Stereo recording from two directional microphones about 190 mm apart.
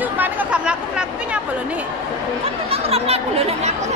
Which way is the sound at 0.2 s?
5° right (ahead or behind).